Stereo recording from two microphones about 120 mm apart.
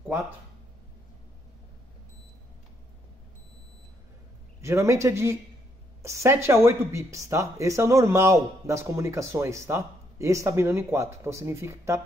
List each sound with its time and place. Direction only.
4.6 s speech: 25° right (ahead or behind)